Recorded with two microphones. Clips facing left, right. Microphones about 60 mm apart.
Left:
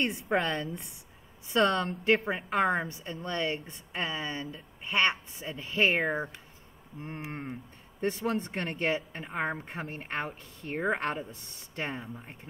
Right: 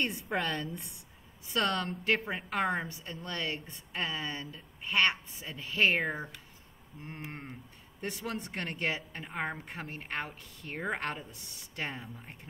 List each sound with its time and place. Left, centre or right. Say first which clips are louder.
0.0 s a woman's voice: left 4 dB; left
11.2 s speech: left 3 dB; left
11.9 s speech: left 4 dB; centre